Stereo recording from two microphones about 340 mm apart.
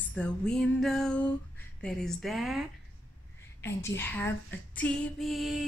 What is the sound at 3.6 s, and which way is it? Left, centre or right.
Speech, centre.